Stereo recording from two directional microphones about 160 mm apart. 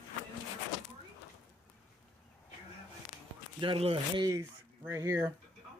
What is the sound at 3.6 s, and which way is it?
Speech, 35° right (ahead or behind).